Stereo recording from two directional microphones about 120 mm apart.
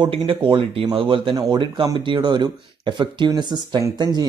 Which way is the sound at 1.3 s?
30° right (ahead or behind).